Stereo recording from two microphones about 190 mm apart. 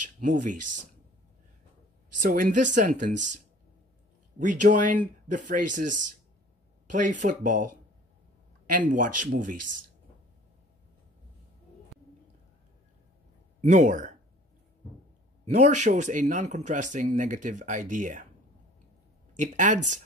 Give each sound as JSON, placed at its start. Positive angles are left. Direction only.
{"t": 0.2, "sound": "speech", "side_deg": -40}
{"t": 2.1, "sound": "speech", "side_deg": -45}
{"t": 4.4, "sound": "speech", "side_deg": -45}
{"t": 8.7, "sound": "speech", "side_deg": -45}
{"t": 11.9, "sound": "bird", "side_deg": 0}
{"t": 13.6, "sound": "speech", "side_deg": -40}
{"t": 15.4, "sound": "speech", "side_deg": -35}
{"t": 19.4, "sound": "speech", "side_deg": -40}